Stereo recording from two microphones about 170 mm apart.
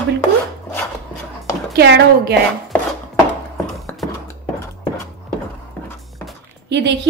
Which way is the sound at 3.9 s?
10° left (ahead or behind).